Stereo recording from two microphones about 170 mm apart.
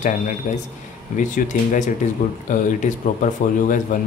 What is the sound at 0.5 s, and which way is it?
Speech, 45° left (ahead or behind).